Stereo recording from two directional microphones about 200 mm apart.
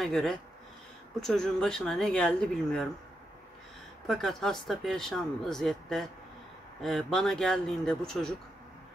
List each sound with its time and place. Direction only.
0.0 s speech: centre (ahead or behind)
4.1 s speech: centre (ahead or behind)